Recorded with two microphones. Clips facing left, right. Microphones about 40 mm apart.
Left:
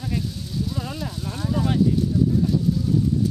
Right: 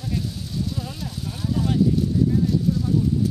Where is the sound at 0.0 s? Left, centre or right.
Centre.